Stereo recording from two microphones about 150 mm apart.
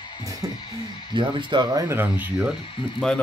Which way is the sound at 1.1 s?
30° right (ahead or behind).